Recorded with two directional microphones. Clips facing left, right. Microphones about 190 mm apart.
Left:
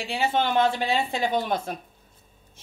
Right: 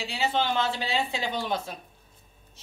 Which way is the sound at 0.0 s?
55° left (ahead or behind).